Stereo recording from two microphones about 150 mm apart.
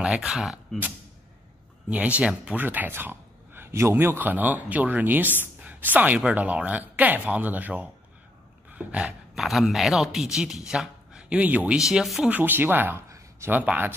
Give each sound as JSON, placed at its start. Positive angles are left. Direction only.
{"t": 0.0, "sound": "speech", "side_deg": -5}